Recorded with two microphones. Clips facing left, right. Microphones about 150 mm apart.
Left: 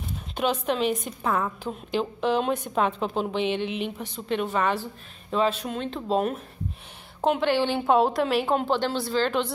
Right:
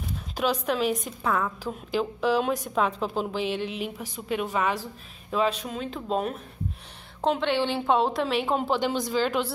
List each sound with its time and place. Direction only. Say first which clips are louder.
0.4 s a woman's voice: left 1 dB; centre (ahead or behind)